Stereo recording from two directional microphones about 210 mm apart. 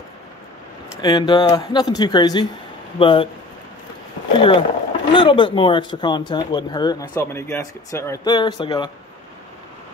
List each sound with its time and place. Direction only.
1.0 s speech: 20° left (ahead or behind)
4.4 s speech: 25° left (ahead or behind)